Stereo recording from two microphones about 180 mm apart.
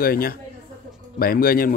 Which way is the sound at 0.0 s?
55° left (ahead or behind).